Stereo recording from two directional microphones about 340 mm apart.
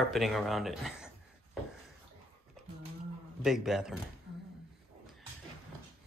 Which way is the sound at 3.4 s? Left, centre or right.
Centre.